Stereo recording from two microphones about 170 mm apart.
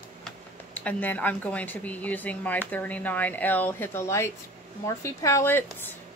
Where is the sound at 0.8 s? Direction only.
10° left (ahead or behind).